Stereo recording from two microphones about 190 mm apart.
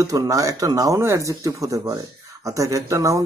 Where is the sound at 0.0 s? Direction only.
20° right (ahead or behind).